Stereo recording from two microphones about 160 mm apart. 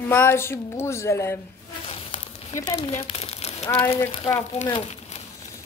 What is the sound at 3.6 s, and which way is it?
Speech, 25° left (ahead or behind).